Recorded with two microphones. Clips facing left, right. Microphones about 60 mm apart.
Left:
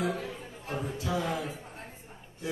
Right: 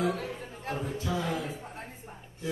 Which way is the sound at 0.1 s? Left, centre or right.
Right.